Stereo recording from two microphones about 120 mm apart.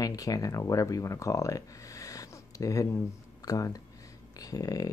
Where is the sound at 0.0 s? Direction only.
30° left (ahead or behind).